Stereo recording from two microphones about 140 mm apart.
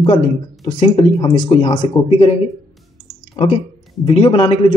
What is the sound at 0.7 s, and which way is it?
Speech, 50° left (ahead or behind).